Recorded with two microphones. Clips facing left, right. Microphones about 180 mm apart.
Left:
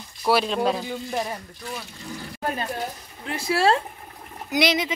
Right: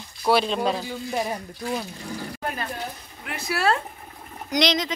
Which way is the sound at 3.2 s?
30° left (ahead or behind).